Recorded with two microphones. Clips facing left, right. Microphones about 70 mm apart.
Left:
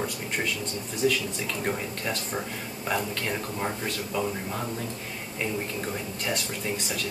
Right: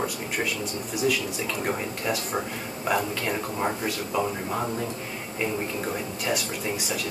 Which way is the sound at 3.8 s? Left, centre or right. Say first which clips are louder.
Right 3 dB; centre.